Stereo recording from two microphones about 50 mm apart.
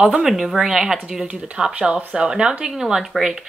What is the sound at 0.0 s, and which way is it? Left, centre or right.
Speech, centre.